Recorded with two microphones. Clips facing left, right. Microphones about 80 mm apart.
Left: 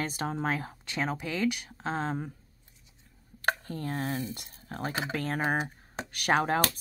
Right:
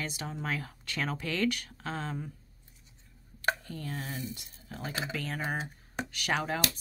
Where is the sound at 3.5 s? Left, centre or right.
Left.